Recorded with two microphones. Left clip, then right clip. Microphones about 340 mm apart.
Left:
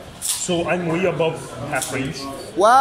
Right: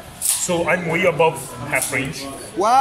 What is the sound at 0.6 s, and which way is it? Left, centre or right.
Speech, right.